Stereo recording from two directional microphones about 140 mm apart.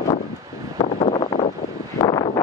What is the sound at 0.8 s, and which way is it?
Wind noise, 55° left (ahead or behind).